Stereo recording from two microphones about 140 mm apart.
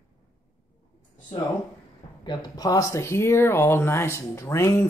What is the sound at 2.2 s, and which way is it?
Speech, 30° left (ahead or behind).